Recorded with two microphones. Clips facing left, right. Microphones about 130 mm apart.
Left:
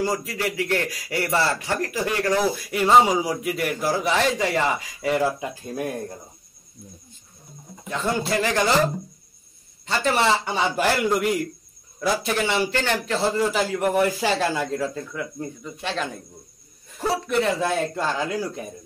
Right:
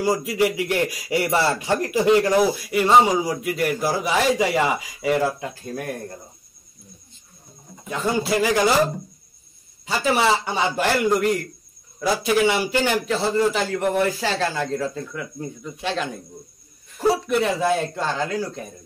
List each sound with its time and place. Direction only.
0.0 s a man's voice: 15° right (ahead or behind)
2.7 s a man's voice: centre (ahead or behind)
5.4 s speech: 10° left (ahead or behind)
7.9 s a man's voice: 5° right (ahead or behind)
9.8 s a man's voice: 5° right (ahead or behind)
17.3 s a man's voice: 5° right (ahead or behind)